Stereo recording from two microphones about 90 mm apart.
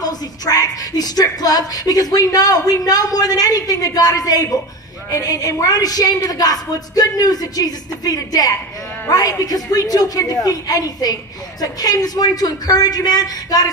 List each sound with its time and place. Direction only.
0.0 s a woman's voice: 45° left (ahead or behind)